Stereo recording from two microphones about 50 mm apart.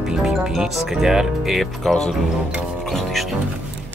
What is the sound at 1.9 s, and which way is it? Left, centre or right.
Speech, centre.